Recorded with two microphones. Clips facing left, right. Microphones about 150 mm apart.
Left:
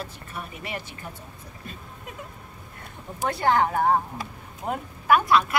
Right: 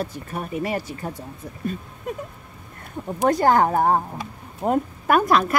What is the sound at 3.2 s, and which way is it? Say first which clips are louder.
A woman's voice: right 5 dB; 40° right (ahead or behind).